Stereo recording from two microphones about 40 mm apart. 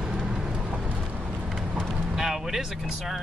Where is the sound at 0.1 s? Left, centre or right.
Centre.